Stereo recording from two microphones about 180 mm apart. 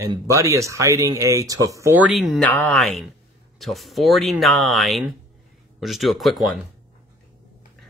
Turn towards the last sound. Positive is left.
turn(degrees=0)  # may be behind; listen again after turning